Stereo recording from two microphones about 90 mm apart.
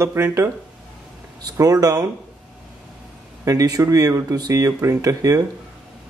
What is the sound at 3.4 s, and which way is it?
Speech, 40° right (ahead or behind).